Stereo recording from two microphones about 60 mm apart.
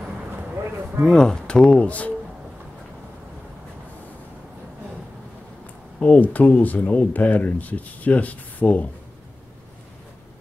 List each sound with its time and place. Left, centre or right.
1.0 s speech: centre
5.9 s speech: left